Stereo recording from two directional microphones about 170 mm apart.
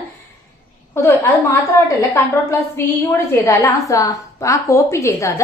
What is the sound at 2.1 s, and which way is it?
Speech, 15° left (ahead or behind).